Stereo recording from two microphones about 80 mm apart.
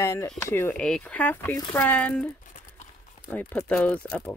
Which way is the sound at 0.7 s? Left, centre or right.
Centre.